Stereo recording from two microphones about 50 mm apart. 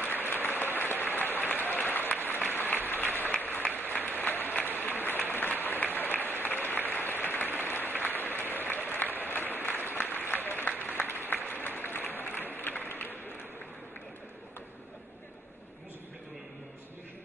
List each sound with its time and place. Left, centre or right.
0.1 s applause: left